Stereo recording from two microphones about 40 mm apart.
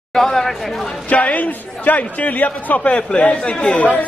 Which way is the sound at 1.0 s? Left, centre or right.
Left.